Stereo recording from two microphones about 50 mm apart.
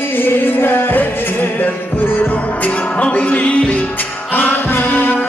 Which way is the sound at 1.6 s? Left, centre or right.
Left.